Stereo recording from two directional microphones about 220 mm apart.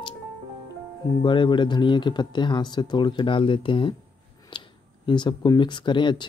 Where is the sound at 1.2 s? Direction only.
20° left (ahead or behind).